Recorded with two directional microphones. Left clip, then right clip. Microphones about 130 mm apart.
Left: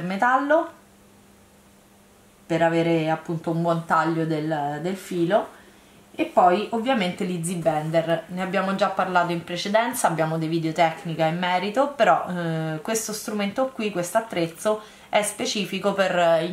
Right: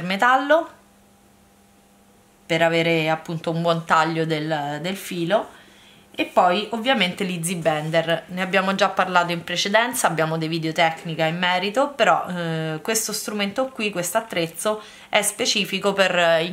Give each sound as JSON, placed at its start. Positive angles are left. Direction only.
{"t": 0.1, "sound": "speech", "side_deg": -20}
{"t": 2.4, "sound": "a woman's voice", "side_deg": -20}